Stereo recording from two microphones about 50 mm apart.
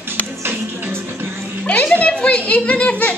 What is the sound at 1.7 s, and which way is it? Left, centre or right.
A child's voice, left.